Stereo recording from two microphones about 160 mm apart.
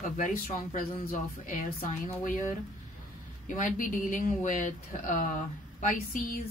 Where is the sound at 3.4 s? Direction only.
55° left (ahead or behind).